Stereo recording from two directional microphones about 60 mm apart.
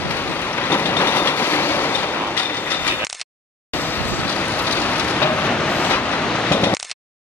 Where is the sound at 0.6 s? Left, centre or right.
Left.